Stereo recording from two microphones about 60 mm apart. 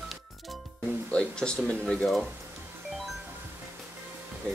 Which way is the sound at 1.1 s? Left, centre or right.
Centre.